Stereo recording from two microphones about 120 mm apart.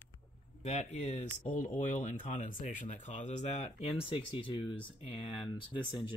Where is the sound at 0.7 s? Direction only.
70° left (ahead or behind).